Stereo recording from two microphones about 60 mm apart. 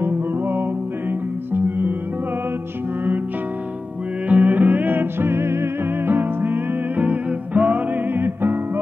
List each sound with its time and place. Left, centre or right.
0.0 s music: right
4.3 s music: right